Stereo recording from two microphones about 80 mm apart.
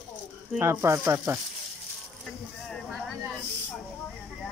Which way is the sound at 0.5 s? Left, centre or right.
Right.